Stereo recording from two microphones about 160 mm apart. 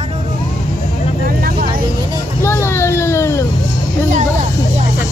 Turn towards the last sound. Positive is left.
turn(degrees=15)  # may be behind; listen again after turning